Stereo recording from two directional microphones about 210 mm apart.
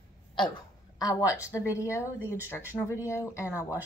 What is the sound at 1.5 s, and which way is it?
Speech, 15° left (ahead or behind).